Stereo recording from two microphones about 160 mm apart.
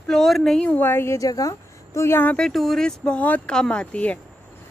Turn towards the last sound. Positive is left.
turn(degrees=10)  # may be behind; listen again after turning